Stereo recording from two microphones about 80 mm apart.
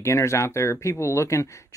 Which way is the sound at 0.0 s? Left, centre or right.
Left.